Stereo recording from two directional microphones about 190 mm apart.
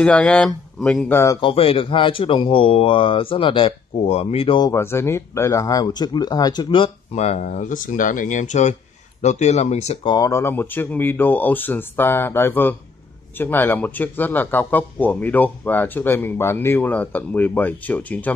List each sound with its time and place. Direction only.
0.0 s speech: 5° left (ahead or behind)
1.1 s speech: 15° left (ahead or behind)
1.4 s speech: 30° left (ahead or behind)
10.1 s speech: 15° left (ahead or behind)